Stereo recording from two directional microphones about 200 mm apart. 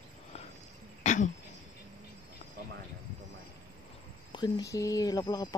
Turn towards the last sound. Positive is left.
turn(degrees=20)  # may be behind; listen again after turning